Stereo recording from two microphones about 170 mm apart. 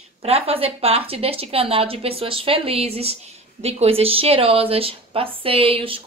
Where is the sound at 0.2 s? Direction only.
35° right (ahead or behind).